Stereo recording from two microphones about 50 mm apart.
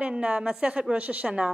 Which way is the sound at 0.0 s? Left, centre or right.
Centre.